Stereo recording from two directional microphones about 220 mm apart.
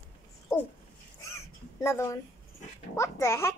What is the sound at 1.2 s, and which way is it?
Crow, 10° left (ahead or behind).